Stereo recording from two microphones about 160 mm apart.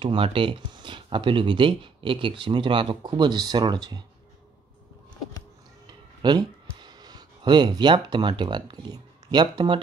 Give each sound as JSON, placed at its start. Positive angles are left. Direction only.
{"t": 0.0, "sound": "speech", "side_deg": -35}
{"t": 6.2, "sound": "speech", "side_deg": -25}